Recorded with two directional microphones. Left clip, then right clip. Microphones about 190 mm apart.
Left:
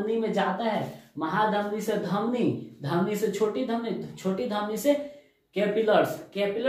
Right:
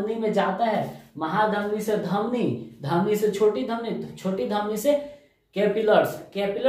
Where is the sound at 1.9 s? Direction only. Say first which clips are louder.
Right 3 dB; 15° right (ahead or behind).